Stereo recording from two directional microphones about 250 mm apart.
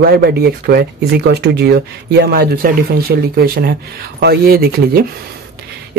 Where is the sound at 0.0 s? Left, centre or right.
Right.